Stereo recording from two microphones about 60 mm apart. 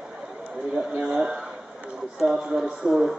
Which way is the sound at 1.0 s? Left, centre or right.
Centre.